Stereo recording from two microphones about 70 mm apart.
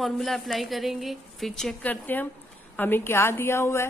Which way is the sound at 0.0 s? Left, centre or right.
Centre.